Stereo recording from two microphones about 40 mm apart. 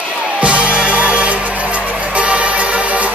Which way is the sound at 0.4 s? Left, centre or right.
Right.